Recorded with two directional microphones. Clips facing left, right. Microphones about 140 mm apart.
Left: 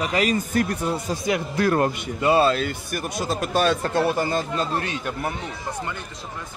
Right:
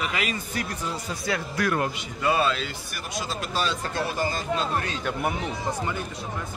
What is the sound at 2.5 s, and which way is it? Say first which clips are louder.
Speech: left 7 dB; 50° left (ahead or behind).